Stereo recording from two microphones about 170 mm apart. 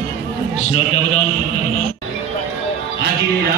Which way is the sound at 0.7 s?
35° left (ahead or behind).